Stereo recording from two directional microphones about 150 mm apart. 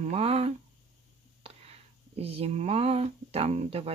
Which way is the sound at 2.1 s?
40° right (ahead or behind).